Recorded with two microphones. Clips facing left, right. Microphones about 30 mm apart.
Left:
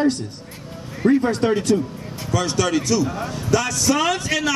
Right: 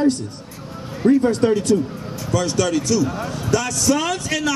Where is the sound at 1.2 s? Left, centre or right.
Centre.